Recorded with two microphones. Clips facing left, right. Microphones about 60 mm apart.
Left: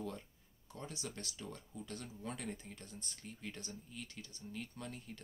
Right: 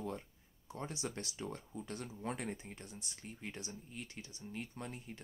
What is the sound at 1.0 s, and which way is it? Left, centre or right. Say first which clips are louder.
Speech: right 4 dB; right.